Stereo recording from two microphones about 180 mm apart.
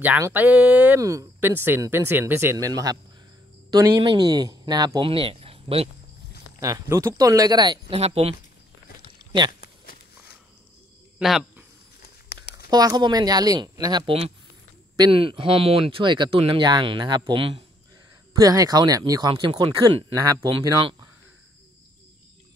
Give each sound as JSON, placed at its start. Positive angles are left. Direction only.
{"t": 0.0, "sound": "speech", "side_deg": -10}
{"t": 6.6, "sound": "speech", "side_deg": -15}
{"t": 9.5, "sound": "a sound", "side_deg": 55}
{"t": 11.1, "sound": "speech", "side_deg": -5}
{"t": 12.0, "sound": "a sound", "side_deg": 65}
{"t": 12.6, "sound": "speech", "side_deg": -20}
{"t": 18.3, "sound": "speech", "side_deg": -20}